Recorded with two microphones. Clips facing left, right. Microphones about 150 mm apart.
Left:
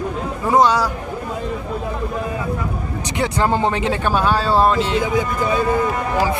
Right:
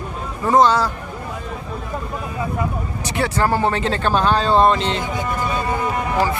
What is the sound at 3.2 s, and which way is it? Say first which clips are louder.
Speech: even; 20° left (ahead or behind).